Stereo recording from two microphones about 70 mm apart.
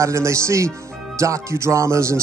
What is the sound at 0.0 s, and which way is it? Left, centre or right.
Speech, right.